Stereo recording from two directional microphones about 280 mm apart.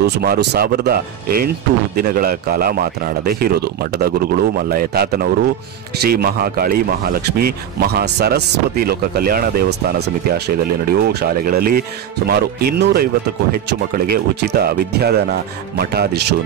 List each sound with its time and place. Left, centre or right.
0.0 s speech: right
14.1 s speech: right